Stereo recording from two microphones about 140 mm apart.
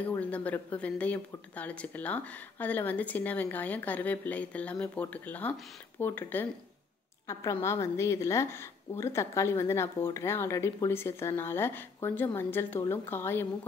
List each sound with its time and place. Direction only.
0.2 s speech: 10° left (ahead or behind)
7.6 s a woman's voice: 20° left (ahead or behind)